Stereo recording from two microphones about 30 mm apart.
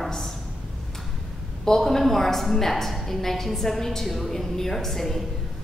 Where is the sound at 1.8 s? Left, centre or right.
Centre.